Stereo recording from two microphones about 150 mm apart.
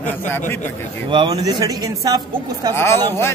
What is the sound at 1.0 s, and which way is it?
Speech, 30° right (ahead or behind).